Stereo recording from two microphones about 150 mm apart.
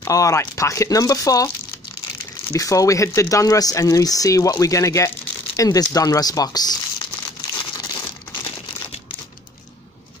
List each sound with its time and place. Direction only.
0.0 s speech: 20° left (ahead or behind)
2.5 s speech: 20° left (ahead or behind)
7.5 s crumpling: 25° left (ahead or behind)